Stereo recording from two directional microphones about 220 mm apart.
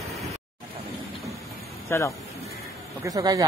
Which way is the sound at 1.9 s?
10° left (ahead or behind).